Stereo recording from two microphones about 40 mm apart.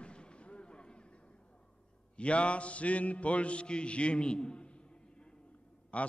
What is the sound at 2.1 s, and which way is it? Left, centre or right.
Mantra, left.